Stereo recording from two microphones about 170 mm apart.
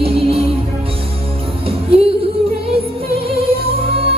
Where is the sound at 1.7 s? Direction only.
35° right (ahead or behind).